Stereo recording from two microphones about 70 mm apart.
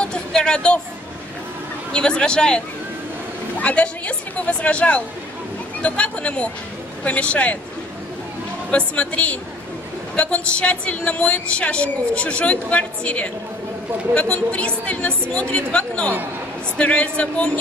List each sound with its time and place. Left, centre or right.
0.0 s a sound: centre
1.9 s a woman's voice: centre
8.6 s a woman's voice: centre
14.3 s a woman's voice: centre